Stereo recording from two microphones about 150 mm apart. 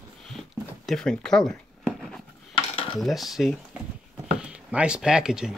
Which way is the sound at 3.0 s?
Centre (ahead or behind).